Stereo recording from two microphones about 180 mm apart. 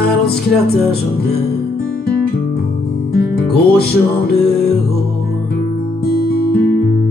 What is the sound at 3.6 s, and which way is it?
Music, 60° left (ahead or behind).